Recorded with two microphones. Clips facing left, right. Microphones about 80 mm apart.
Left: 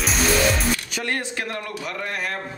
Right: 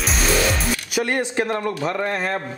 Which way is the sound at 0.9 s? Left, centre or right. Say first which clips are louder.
Right 5 dB; centre.